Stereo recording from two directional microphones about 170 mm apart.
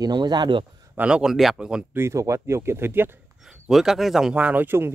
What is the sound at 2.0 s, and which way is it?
Speech, 15° right (ahead or behind).